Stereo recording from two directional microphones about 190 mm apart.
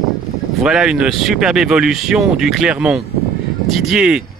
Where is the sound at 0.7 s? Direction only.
5° right (ahead or behind).